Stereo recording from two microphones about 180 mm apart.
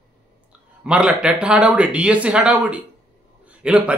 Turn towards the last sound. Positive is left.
turn(degrees=-5)  # may be behind; listen again after turning